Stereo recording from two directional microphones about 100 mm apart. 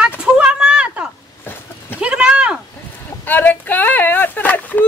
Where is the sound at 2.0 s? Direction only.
10° right (ahead or behind).